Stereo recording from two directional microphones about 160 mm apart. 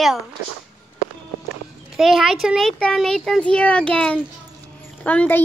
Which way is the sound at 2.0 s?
Centre (ahead or behind).